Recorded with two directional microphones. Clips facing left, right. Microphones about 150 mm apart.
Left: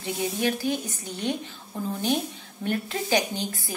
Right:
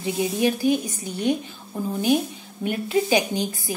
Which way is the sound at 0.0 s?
15° right (ahead or behind).